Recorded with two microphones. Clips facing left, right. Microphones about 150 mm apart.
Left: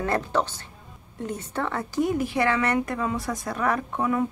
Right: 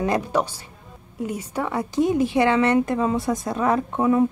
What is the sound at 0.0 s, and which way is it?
A woman's voice, 15° right (ahead or behind).